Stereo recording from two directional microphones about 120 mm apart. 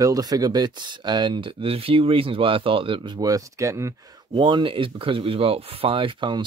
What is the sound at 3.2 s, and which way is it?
Speech, 25° right (ahead or behind).